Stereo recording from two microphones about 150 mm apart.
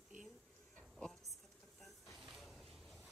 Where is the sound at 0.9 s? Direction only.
Centre (ahead or behind).